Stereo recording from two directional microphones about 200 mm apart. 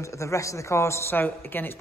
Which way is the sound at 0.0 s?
15° left (ahead or behind).